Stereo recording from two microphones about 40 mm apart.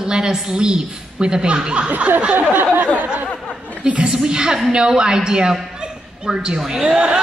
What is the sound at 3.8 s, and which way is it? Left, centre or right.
A woman's voice, right.